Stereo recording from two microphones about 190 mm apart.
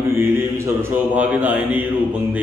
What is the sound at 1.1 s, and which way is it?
Speech, 10° right (ahead or behind).